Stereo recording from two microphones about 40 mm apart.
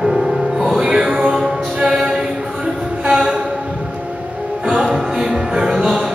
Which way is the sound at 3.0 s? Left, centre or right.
Centre.